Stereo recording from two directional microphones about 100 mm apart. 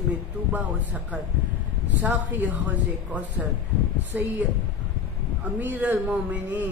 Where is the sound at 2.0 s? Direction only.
15° right (ahead or behind).